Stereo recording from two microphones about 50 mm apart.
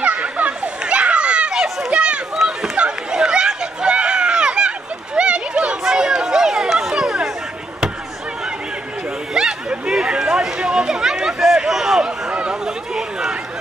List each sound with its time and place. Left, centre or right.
0.0 s children playing: right
2.3 s chatter: centre
5.9 s run: centre
9.3 s chatter: centre
12.3 s a sound: right